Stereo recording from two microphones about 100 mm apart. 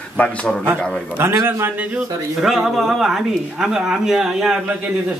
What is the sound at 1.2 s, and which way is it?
Speech, 25° right (ahead or behind).